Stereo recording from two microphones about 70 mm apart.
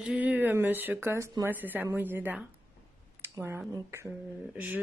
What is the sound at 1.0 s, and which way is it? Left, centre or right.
Speech, right.